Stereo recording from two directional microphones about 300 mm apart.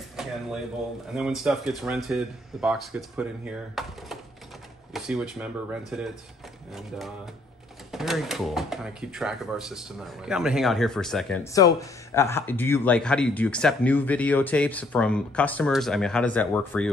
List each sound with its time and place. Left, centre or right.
0.1 s speech: centre
7.9 s speech: centre